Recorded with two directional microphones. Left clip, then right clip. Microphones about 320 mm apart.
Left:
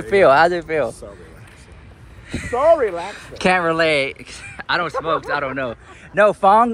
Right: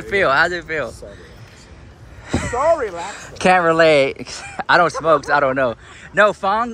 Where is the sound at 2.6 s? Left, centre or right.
Left.